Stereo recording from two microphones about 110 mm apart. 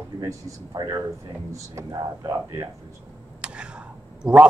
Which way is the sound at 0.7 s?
35° right (ahead or behind).